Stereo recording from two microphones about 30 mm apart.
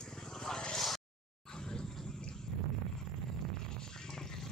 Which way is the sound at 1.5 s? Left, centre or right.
Left.